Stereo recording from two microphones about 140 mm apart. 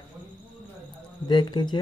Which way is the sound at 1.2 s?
30° left (ahead or behind).